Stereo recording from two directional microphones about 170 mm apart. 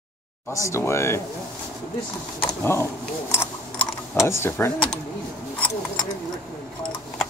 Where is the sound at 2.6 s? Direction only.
15° left (ahead or behind).